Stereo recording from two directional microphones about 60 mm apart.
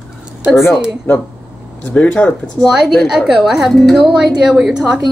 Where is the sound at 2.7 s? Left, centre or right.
Centre.